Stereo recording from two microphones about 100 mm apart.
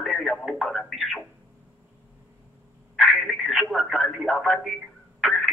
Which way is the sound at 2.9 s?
Centre (ahead or behind).